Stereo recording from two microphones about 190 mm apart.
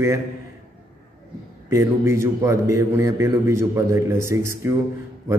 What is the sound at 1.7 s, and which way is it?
A man's voice, 15° right (ahead or behind).